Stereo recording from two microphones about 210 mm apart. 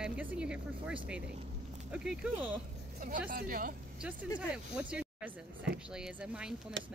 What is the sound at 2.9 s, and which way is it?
Speech, 40° right (ahead or behind).